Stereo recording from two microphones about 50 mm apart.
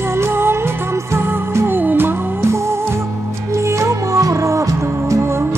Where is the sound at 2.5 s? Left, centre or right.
Right.